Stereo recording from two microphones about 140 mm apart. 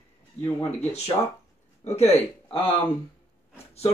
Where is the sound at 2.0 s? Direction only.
50° left (ahead or behind).